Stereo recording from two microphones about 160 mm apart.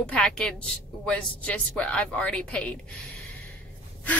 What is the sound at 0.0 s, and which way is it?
A woman's voice, 5° left (ahead or behind).